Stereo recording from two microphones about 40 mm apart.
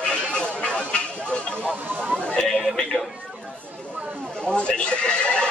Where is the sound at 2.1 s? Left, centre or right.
Centre.